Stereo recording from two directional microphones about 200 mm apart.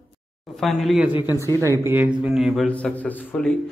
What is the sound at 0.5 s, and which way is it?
A man's voice, centre (ahead or behind).